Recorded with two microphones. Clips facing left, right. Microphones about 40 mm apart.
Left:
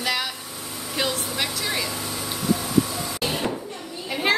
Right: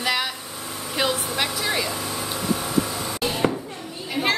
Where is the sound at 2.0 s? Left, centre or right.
Right.